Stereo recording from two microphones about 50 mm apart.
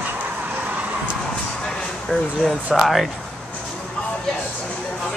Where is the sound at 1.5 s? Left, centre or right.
Centre.